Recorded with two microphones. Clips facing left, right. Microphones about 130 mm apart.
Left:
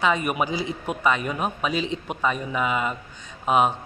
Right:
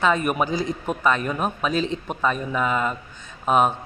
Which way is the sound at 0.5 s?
45° right (ahead or behind).